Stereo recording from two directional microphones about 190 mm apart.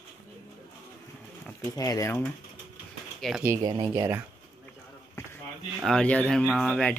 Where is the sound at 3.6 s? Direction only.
20° right (ahead or behind).